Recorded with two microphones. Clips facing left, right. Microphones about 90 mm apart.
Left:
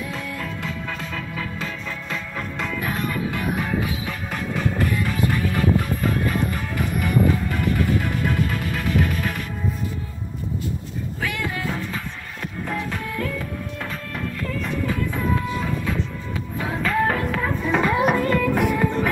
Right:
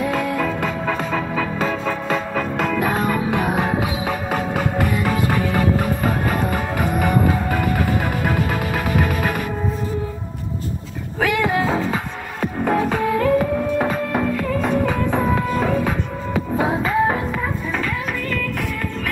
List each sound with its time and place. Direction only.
0.0 s music: 65° right (ahead or behind)
0.7 s music: 50° right (ahead or behind)
1.1 s music: 80° right
1.6 s music: 40° right (ahead or behind)
2.3 s music: 50° right (ahead or behind)
3.1 s music: 70° right (ahead or behind)
11.1 s music: 75° right (ahead or behind)
12.4 s music: 45° right (ahead or behind)
12.8 s music: 75° right (ahead or behind)
14.3 s music: 55° right (ahead or behind)
16.7 s music: 15° right (ahead or behind)
17.7 s a sound: 20° left (ahead or behind)
18.4 s music: 10° left (ahead or behind)